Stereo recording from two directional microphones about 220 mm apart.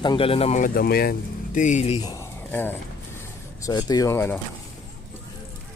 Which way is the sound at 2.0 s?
15° left (ahead or behind).